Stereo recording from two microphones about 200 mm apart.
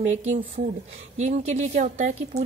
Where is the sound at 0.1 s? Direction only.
35° right (ahead or behind).